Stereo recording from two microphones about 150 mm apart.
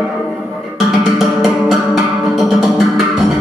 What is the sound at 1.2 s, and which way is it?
Music, centre (ahead or behind).